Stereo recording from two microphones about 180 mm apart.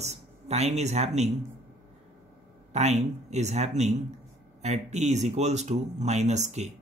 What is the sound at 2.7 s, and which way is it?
Speech, 40° right (ahead or behind).